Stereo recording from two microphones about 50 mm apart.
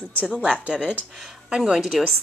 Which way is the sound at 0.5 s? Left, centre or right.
Centre.